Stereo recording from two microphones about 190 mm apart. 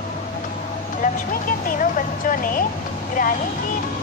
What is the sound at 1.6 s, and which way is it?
Speech, 45° left (ahead or behind).